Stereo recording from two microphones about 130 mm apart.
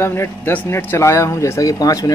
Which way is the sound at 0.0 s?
20° left (ahead or behind).